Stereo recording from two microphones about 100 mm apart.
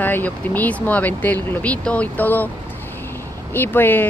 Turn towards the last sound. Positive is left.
turn(degrees=20)  # may be behind; listen again after turning